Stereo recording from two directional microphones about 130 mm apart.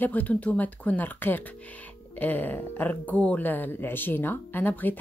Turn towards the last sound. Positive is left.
turn(degrees=15)  # may be behind; listen again after turning